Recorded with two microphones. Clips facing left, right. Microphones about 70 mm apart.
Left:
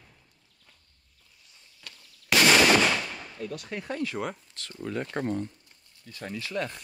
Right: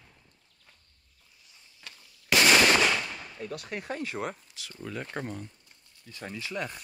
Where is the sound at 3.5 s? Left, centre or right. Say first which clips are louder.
Right 1 dB; right.